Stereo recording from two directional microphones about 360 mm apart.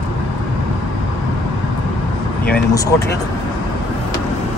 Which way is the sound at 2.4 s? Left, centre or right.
Centre.